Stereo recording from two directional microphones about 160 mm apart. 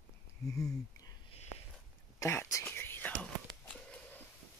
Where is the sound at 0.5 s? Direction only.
20° left (ahead or behind).